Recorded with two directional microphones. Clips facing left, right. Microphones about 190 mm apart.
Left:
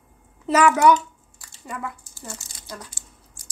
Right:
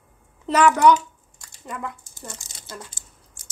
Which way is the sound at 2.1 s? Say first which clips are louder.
Left 1 dB; 20° right (ahead or behind).